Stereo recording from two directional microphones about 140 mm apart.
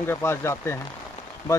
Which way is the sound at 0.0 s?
15° left (ahead or behind).